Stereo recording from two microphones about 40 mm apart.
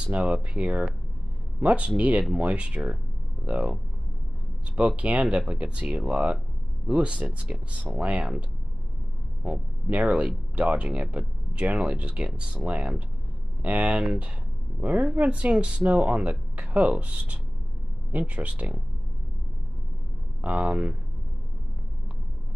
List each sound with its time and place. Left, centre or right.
0.1 s speech: right
9.5 s speech: right
11.6 s speech: right
20.4 s speech: right